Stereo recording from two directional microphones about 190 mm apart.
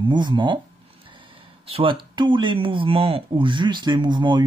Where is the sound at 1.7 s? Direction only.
25° right (ahead or behind).